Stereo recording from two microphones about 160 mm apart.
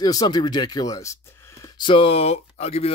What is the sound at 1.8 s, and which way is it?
Speech, 35° left (ahead or behind).